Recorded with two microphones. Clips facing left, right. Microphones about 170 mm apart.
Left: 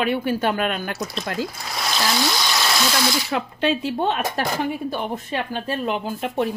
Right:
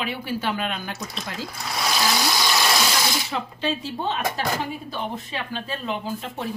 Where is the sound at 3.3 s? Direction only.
60° left (ahead or behind).